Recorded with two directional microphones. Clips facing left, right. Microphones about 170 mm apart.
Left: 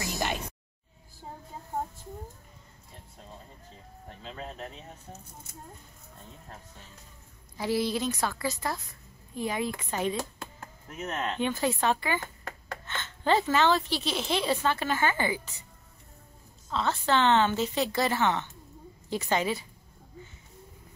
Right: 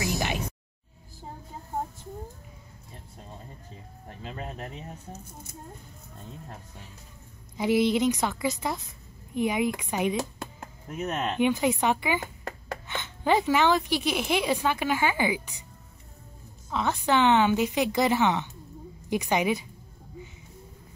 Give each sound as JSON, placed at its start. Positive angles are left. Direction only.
{"t": 0.0, "sound": "a sound", "side_deg": -10}
{"t": 4.2, "sound": "speech", "side_deg": -10}
{"t": 7.5, "sound": "a woman's voice", "side_deg": -20}
{"t": 16.7, "sound": "a woman's voice", "side_deg": -15}